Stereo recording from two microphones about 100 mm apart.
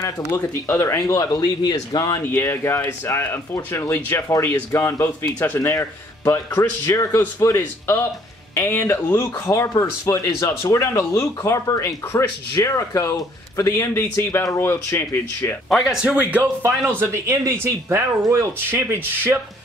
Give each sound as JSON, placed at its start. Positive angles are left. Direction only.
{"t": 0.0, "sound": "speech", "side_deg": 25}
{"t": 2.2, "sound": "speech", "side_deg": 20}
{"t": 15.7, "sound": "speech", "side_deg": -5}
{"t": 16.6, "sound": "speech", "side_deg": -25}